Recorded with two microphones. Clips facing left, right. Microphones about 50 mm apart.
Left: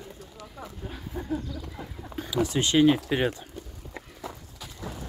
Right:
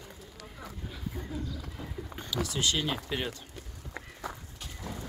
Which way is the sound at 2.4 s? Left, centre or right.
Left.